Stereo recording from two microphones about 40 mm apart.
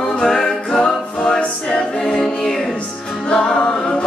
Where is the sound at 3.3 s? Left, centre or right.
Centre.